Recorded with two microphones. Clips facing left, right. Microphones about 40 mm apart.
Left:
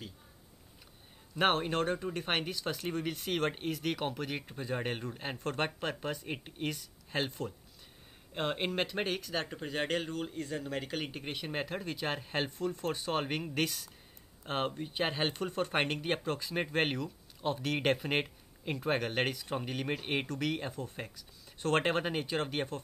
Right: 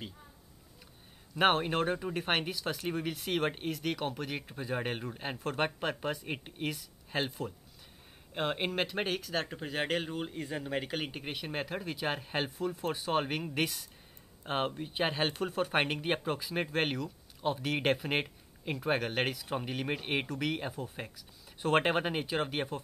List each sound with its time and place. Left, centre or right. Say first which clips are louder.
1.3 s speech: right 2 dB; centre
11.3 s speech: left 1 dB; centre